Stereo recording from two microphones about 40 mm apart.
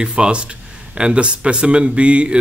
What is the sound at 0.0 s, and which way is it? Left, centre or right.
Speech, right.